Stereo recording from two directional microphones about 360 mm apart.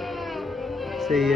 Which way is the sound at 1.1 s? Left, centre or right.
Centre.